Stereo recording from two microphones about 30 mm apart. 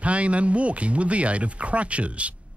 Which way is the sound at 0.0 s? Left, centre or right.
Right.